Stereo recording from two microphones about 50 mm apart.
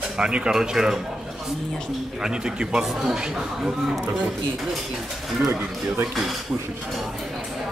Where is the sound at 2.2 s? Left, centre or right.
Centre.